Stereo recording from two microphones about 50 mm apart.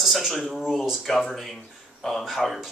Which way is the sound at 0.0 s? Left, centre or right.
Centre.